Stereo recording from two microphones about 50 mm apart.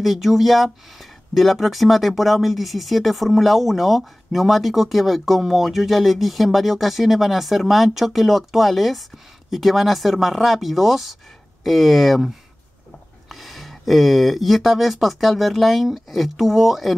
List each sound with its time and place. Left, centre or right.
0.0 s speech: centre
13.3 s speech: centre